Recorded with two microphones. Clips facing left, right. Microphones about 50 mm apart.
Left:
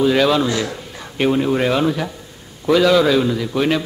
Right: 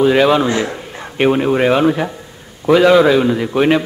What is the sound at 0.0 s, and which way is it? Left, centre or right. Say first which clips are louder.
A man's voice: right 4 dB; right.